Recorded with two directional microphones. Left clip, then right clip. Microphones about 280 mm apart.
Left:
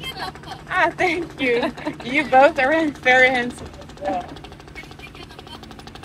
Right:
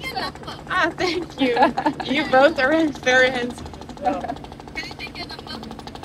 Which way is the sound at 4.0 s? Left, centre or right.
Right.